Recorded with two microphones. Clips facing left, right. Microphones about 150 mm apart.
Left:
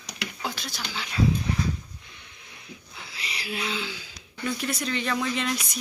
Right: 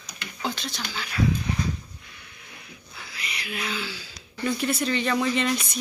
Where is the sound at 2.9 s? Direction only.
25° left (ahead or behind).